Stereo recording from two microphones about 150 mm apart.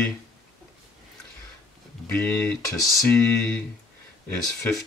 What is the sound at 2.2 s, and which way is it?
Speech, 5° left (ahead or behind).